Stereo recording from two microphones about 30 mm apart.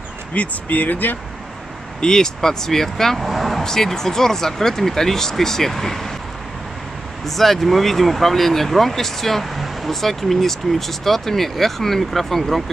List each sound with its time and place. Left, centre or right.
0.3 s speech: left
2.0 s speech: left
3.2 s vehicle: centre
3.6 s speech: centre
7.2 s speech: centre